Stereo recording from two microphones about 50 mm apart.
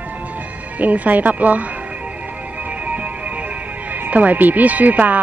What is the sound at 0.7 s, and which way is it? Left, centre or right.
Speech, right.